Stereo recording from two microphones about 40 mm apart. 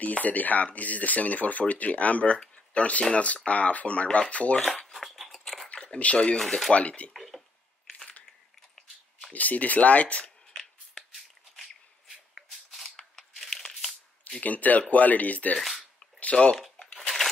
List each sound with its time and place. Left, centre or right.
0.0 s speech: left
4.8 s a sound: centre
5.9 s speech: left
6.3 s speech: centre
6.7 s speech: left
7.2 s a sound: centre
9.3 s speech: left
12.9 s scissors: centre
13.7 s a sound: centre
14.4 s speech: left
16.3 s speech: centre
16.8 s a sound: left